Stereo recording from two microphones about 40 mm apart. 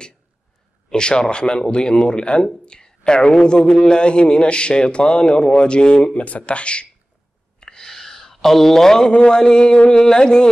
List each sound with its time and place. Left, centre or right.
0.8 s a man's voice: left
6.2 s speech: left
7.6 s a sound: centre
9.1 s a man's voice: left